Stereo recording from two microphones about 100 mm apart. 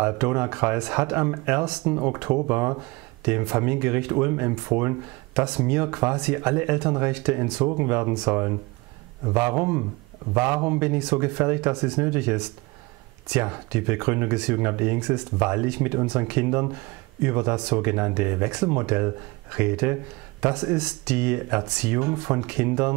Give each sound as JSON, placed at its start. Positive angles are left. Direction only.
{"t": 0.0, "sound": "speech", "side_deg": -20}
{"t": 5.4, "sound": "speech", "side_deg": -10}
{"t": 7.6, "sound": "speech", "side_deg": -20}